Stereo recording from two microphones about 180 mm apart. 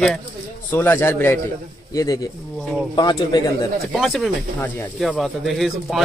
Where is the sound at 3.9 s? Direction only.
Centre (ahead or behind).